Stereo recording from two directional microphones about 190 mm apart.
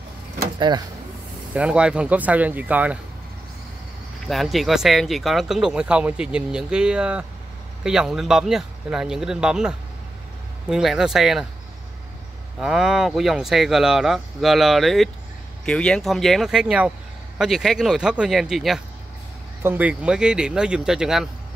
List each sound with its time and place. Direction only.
0.6 s speech: 25° right (ahead or behind)
1.5 s speech: 5° right (ahead or behind)
4.3 s speech: centre (ahead or behind)
12.5 s speech: 5° right (ahead or behind)